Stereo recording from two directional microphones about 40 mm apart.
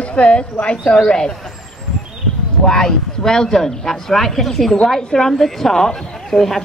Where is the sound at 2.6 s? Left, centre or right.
Centre.